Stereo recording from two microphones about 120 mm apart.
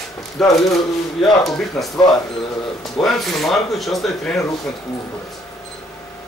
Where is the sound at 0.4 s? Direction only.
Centre (ahead or behind).